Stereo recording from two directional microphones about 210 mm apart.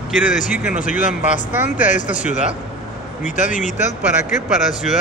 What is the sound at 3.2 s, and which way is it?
Speech, 35° left (ahead or behind).